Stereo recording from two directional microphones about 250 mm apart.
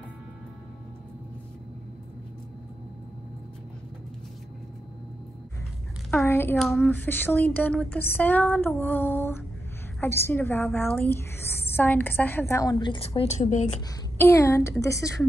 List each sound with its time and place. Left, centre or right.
6.2 s speech: centre; by 13.7 s left
14.1 s speech: centre